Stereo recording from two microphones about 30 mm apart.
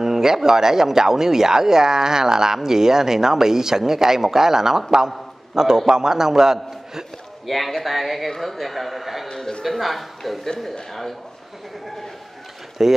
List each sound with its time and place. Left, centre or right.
0.0 s a man's voice: centre
7.4 s a man's voice: centre
9.3 s speech: left
9.7 s a man's voice: centre
10.9 s a man's voice: centre
12.8 s speech: centre